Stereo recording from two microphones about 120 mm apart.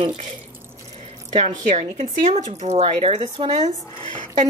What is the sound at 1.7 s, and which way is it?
Speech, 85° right.